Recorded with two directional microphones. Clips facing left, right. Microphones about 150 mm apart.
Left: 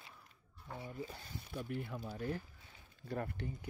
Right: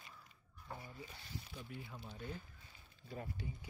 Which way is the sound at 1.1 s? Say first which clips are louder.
Left 4 dB; 45° left (ahead or behind).